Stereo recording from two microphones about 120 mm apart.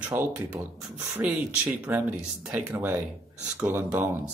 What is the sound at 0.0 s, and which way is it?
Speech, 15° right (ahead or behind).